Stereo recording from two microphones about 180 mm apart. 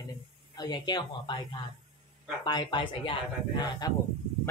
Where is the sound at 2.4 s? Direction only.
25° left (ahead or behind).